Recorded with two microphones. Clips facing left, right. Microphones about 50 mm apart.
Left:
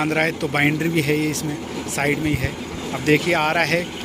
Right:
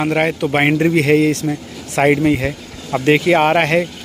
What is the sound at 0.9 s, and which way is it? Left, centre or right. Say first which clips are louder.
Speech: right 7 dB; right.